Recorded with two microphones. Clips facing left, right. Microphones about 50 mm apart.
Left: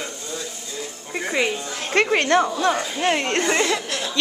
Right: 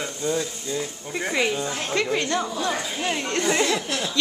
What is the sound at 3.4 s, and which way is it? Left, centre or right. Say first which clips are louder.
Speech: right 2 dB; centre.